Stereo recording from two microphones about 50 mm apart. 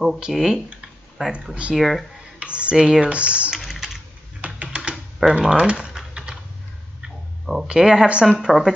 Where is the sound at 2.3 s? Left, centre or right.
Right.